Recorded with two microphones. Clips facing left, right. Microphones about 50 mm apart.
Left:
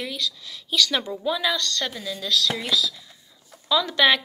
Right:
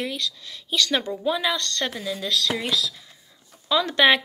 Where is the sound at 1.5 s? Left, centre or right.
Right.